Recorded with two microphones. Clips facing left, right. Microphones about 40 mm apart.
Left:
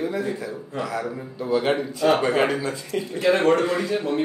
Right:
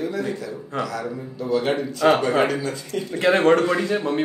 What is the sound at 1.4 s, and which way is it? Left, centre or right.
Speech, centre.